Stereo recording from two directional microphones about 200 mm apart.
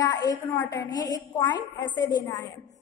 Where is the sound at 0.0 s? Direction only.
20° left (ahead or behind).